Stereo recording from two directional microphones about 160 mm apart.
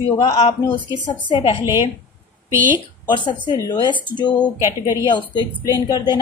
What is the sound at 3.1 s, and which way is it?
Speech, 30° left (ahead or behind).